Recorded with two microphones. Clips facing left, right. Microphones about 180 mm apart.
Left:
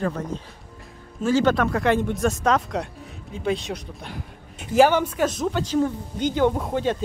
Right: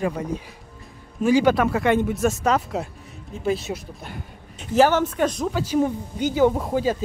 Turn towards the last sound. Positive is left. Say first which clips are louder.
# right 1 dB
turn(degrees=-5)  # may be behind; listen again after turning